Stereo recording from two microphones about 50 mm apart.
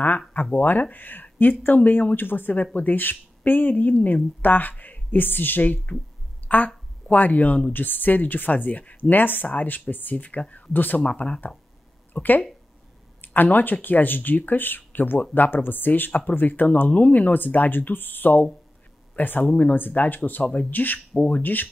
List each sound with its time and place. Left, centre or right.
0.6 s a woman's voice: left
11.1 s speech: left
12.1 s speech: left
16.1 s speech: left